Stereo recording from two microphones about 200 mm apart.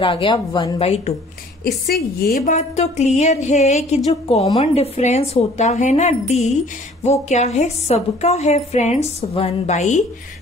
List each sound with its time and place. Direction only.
0.0 s speech: 25° left (ahead or behind)
1.9 s a woman's voice: 45° left (ahead or behind)